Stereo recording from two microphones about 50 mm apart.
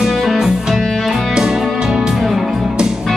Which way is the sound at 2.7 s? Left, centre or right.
Centre.